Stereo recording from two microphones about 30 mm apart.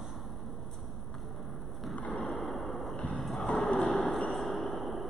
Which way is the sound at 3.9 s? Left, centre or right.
Left.